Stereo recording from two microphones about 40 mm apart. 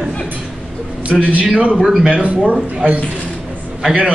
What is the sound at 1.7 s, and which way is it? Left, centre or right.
Speech, centre.